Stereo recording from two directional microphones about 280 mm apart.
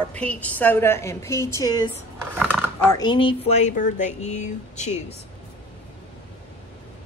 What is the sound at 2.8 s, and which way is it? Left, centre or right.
Speech, centre.